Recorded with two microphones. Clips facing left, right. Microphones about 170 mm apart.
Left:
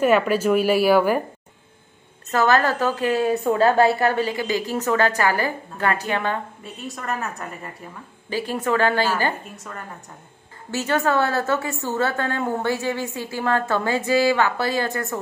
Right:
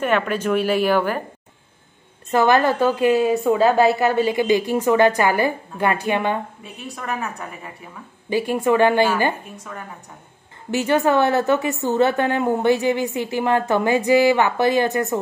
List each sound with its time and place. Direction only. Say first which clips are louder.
0.0 s speech: left 3 dB; 5° left (ahead or behind)
2.3 s a woman's voice: right 3 dB; 15° right (ahead or behind)
6.6 s a woman's voice: even; centre (ahead or behind)
8.3 s a woman's voice: right 5 dB; 15° right (ahead or behind)
10.7 s a woman's voice: right 4 dB; 15° right (ahead or behind)